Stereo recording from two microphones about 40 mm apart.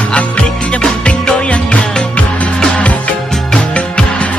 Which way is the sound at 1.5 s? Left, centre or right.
Left.